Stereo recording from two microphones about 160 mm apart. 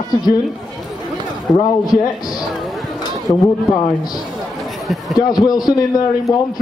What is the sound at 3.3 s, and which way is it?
Speech, 30° left (ahead or behind).